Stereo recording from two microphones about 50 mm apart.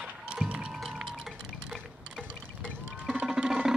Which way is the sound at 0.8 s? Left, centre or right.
Centre.